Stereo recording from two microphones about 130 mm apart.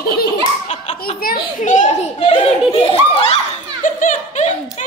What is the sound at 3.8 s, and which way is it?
Speech, 85° left.